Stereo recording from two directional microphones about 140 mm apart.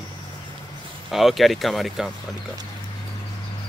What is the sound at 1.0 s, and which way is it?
Emergency vehicle, centre (ahead or behind).